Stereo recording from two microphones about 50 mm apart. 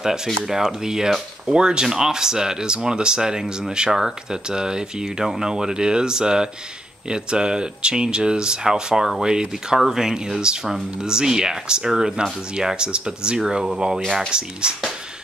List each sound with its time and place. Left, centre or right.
0.0 s speech: centre